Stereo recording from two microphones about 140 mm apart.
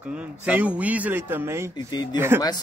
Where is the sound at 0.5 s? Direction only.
10° right (ahead or behind).